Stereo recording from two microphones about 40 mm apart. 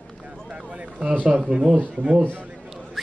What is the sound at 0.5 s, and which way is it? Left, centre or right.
Run, right.